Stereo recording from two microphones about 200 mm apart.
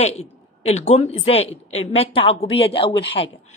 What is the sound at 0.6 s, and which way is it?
A woman's voice, 35° left (ahead or behind).